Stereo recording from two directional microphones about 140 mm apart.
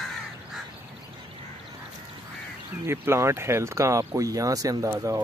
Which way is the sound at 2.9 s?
20° right (ahead or behind).